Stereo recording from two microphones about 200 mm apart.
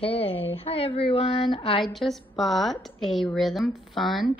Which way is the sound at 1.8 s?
Centre (ahead or behind).